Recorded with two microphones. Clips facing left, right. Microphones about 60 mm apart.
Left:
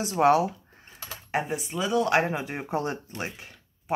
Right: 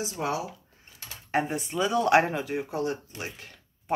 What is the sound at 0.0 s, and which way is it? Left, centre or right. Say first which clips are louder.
Speech: left 9 dB; left.